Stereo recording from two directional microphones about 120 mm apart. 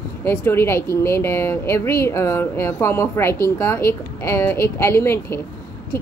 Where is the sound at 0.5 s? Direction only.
20° left (ahead or behind).